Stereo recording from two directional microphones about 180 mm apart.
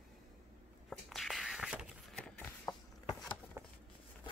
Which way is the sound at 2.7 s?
25° left (ahead or behind).